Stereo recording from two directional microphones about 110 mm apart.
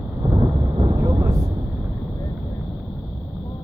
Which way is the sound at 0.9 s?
30° right (ahead or behind).